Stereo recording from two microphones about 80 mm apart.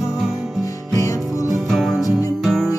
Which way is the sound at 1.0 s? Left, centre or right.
Left.